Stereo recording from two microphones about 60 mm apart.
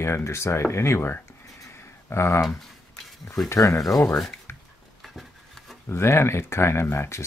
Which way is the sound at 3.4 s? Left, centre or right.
Left.